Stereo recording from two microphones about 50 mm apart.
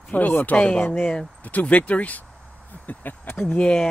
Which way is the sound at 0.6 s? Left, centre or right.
Left.